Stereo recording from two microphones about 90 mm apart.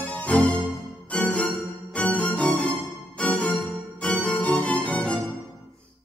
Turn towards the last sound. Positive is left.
turn(degrees=10)  # may be behind; listen again after turning